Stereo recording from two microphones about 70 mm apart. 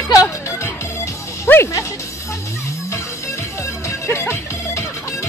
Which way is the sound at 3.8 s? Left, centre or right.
Left.